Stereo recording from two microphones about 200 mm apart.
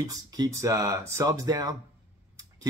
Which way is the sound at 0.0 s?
20° right (ahead or behind).